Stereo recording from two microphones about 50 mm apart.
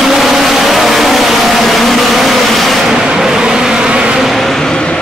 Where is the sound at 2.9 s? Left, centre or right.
Centre.